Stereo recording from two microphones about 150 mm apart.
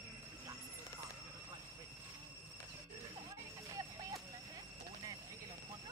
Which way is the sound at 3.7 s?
25° right (ahead or behind).